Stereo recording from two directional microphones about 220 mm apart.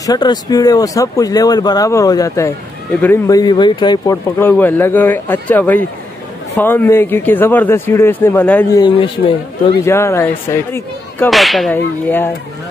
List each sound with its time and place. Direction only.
0.0 s speech: 20° left (ahead or behind)
8.8 s a man's voice: 25° left (ahead or behind)
9.8 s speech: 10° left (ahead or behind)
11.2 s whip: centre (ahead or behind)